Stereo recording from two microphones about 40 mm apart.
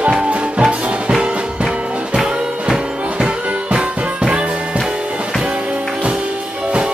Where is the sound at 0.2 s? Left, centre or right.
Right.